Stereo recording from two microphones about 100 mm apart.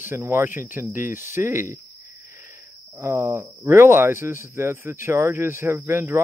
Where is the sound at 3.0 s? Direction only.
25° right (ahead or behind).